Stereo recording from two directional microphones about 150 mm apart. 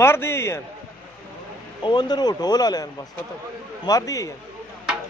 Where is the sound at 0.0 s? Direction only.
15° left (ahead or behind).